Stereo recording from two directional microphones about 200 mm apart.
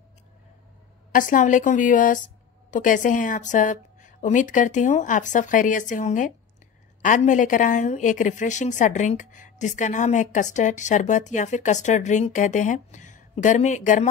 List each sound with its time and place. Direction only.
1.1 s a woman's voice: 40° left (ahead or behind)